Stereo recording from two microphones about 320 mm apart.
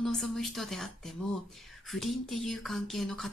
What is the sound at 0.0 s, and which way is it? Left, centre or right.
Speech, centre.